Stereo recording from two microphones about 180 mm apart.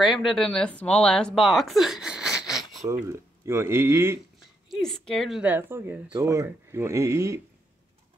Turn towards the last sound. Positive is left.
turn(degrees=-15)  # may be behind; listen again after turning